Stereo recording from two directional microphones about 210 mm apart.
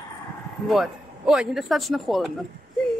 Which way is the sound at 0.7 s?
Centre (ahead or behind).